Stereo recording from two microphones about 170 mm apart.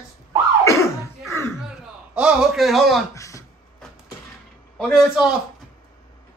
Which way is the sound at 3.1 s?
20° left (ahead or behind).